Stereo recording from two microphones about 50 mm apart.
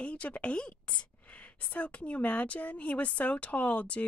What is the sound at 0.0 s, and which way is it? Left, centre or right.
Speech, left.